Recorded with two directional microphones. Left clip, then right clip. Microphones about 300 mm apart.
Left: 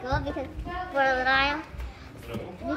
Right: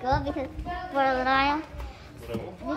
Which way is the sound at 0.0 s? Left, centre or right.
Right.